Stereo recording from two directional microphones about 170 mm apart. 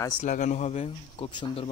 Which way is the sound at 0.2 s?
45° left (ahead or behind).